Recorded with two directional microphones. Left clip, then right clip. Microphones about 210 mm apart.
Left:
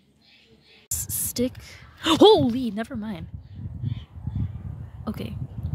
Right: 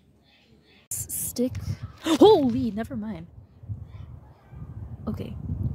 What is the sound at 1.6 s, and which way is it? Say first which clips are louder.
A woman's voice: left 4 dB; centre (ahead or behind).